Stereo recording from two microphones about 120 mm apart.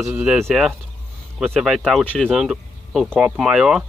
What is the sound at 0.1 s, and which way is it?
Speech, 10° right (ahead or behind).